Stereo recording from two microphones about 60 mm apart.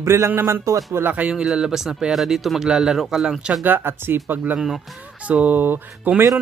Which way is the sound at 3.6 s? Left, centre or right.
Right.